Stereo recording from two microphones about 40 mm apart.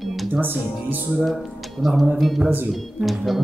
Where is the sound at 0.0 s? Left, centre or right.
Centre.